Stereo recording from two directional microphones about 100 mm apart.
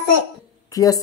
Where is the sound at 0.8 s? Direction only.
35° left (ahead or behind).